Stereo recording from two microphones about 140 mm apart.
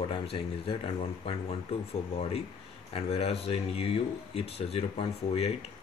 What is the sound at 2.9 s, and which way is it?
Speech, 45° left (ahead or behind).